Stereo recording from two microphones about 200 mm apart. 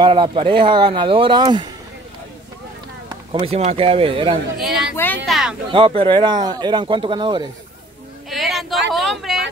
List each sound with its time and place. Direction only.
0.0 s speech: 25° right (ahead or behind)
3.3 s speech: 30° right (ahead or behind)
4.9 s speech: 10° left (ahead or behind)
5.7 s speech: 25° right (ahead or behind)
8.3 s vehicle: centre (ahead or behind)
8.9 s speech: centre (ahead or behind)